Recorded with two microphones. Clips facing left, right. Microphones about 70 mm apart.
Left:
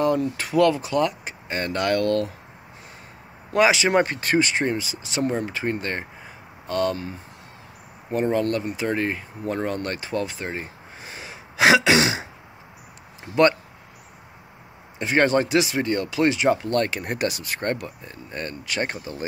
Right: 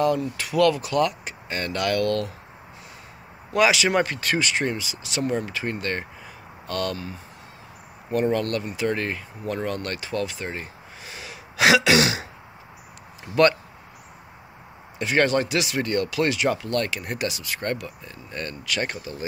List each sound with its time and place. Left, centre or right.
0.0 s speech: left
3.5 s speech: left
8.1 s speech: left
10.5 s throat clearing: left
15.0 s speech: left